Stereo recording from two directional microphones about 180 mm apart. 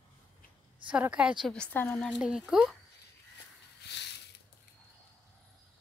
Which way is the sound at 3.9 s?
70° left (ahead or behind).